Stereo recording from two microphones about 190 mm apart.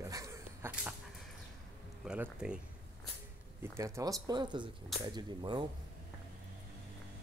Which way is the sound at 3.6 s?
15° right (ahead or behind).